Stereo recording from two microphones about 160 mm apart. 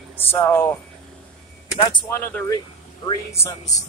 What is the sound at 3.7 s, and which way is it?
Speech, 50° left (ahead or behind).